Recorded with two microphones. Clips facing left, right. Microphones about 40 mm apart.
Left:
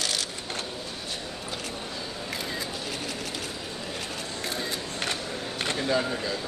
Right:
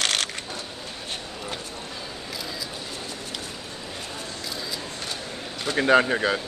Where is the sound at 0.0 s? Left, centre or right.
Right.